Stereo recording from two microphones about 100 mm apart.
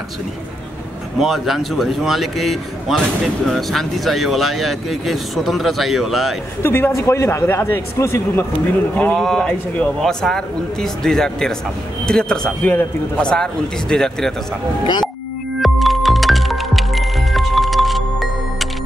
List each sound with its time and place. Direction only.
1.2 s speech: 5° right (ahead or behind)
6.6 s a man's voice: 20° left (ahead or behind)
8.9 s speech: 15° left (ahead or behind)
15.6 s music: centre (ahead or behind)